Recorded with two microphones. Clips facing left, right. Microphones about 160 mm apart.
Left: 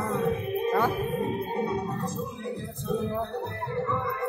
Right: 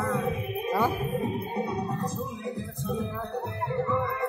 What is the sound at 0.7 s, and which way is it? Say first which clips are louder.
Music: even; 10° right (ahead or behind).